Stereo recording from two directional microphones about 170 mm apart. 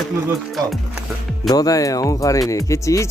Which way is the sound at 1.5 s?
20° left (ahead or behind).